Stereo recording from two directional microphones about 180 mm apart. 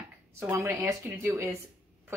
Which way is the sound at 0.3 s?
15° right (ahead or behind).